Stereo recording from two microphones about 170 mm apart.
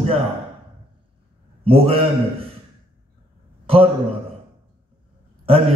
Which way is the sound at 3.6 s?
35° right (ahead or behind).